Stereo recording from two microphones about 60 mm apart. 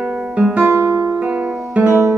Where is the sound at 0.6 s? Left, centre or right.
Right.